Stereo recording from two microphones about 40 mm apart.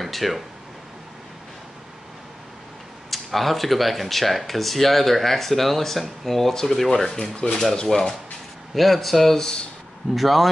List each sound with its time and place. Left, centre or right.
0.0 s speech: centre
3.1 s speech: centre
8.7 s speech: centre
10.1 s speech: centre